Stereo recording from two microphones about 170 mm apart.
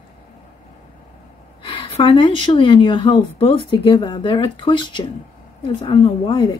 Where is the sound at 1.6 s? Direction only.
30° left (ahead or behind).